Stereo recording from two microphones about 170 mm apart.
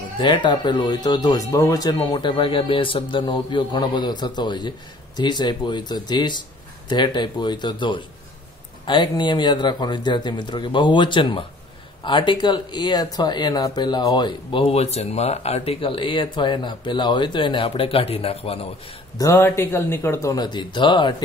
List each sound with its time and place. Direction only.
0.2 s speech: 25° left (ahead or behind)
19.1 s speech: 15° left (ahead or behind)